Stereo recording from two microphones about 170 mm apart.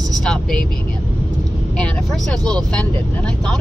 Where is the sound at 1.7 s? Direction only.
5° left (ahead or behind).